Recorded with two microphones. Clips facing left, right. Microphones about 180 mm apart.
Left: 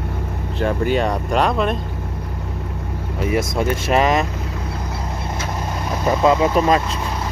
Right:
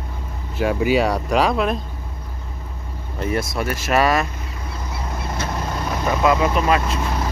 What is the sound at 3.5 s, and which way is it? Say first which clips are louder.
Speech: left 1 dB; 25° left (ahead or behind).